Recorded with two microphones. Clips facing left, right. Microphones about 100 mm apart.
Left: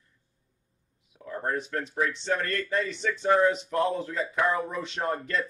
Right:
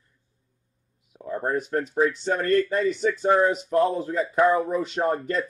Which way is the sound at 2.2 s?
40° right (ahead or behind).